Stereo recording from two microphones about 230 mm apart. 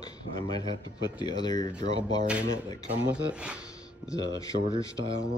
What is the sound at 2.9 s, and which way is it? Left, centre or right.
Speech, centre.